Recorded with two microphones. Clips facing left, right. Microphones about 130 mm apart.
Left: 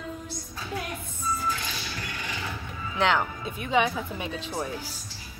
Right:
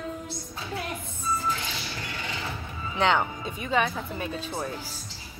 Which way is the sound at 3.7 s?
15° left (ahead or behind).